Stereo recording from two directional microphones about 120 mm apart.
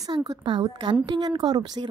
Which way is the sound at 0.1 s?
35° right (ahead or behind).